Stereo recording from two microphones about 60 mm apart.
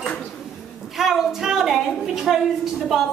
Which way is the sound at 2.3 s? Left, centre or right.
Centre.